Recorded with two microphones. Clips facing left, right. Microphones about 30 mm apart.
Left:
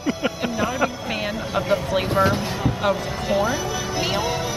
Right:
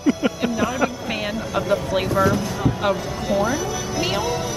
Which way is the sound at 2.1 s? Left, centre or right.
Left.